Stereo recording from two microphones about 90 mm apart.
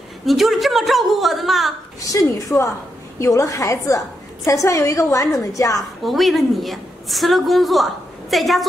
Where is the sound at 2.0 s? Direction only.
35° left (ahead or behind).